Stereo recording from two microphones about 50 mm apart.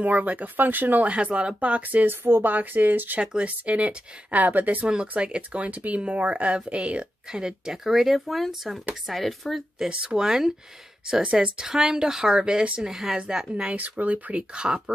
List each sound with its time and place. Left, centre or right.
0.0 s speech: right
2.0 s speech: right
3.4 s speech: right
4.8 s speech: right; by 9.8 s centre
9.8 s speech: centre
11.6 s speech: centre
12.9 s speech: centre
13.7 s speech: right
14.5 s speech: centre